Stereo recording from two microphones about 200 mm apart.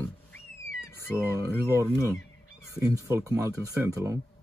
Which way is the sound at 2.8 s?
15° right (ahead or behind).